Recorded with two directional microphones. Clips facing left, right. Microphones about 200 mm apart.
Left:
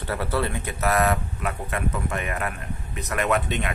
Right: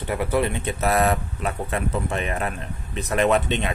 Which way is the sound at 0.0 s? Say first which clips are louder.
Right 3 dB; 15° right (ahead or behind).